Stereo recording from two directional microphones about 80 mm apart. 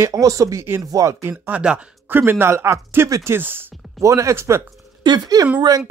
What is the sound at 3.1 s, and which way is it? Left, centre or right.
Speech, right.